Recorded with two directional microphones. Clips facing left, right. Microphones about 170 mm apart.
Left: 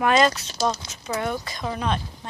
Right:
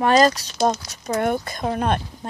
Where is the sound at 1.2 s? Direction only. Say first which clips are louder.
Right 7 dB; 50° right (ahead or behind).